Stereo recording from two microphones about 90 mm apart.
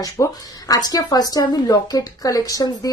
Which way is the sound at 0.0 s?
40° left (ahead or behind).